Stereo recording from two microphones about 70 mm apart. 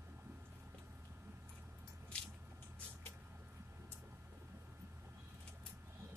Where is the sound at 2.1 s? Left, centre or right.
Centre.